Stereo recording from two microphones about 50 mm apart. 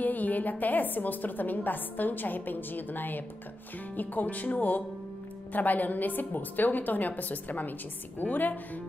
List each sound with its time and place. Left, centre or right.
0.0 s a woman's voice: left